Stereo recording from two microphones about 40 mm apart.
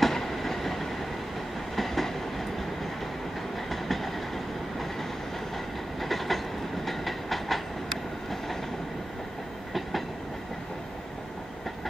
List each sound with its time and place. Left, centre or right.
0.0 s train: centre
3.7 s train: centre
5.9 s train: centre